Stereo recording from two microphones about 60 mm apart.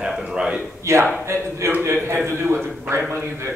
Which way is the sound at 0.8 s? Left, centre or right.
Right.